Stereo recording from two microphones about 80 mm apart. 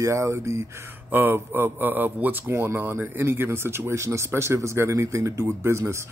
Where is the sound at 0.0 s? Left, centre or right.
Right.